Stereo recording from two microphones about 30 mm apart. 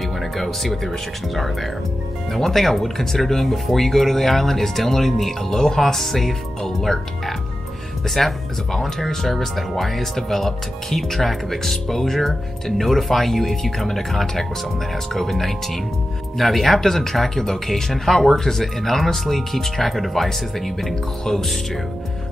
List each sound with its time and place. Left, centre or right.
0.2 s speech: centre
5.7 s speech: centre